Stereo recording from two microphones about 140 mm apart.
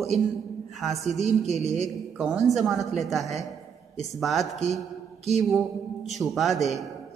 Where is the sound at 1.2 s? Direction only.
50° right (ahead or behind).